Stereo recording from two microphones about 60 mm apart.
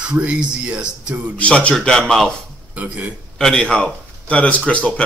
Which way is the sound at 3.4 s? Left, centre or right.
Centre.